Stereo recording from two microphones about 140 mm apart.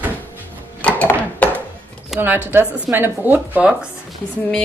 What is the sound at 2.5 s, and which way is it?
Speech, 15° right (ahead or behind).